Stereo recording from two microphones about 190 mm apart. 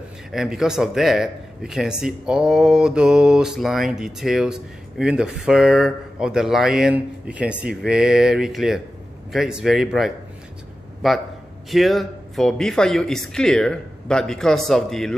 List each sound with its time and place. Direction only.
0.3 s speech: 5° right (ahead or behind)